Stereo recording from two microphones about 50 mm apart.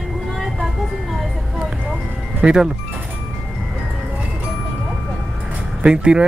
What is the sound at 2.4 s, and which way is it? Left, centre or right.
Speech, centre.